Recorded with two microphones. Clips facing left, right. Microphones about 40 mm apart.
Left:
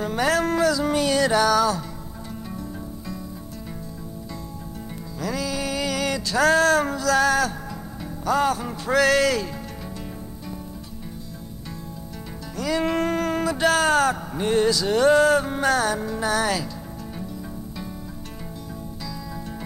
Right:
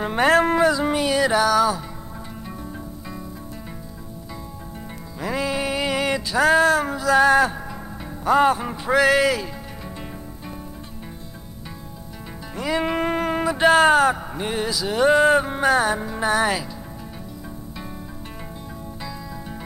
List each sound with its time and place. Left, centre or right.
0.0 s speech: right; by 1.9 s centre
5.2 s a sound: right
6.3 s music: centre
8.3 s speech: right
12.5 s speech: right